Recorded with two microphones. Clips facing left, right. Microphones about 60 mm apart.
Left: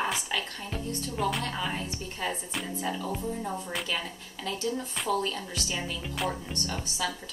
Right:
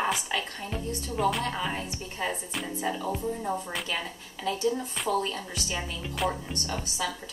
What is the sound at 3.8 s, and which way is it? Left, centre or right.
Speech, centre.